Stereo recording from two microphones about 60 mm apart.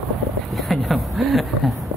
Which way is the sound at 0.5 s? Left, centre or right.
Centre.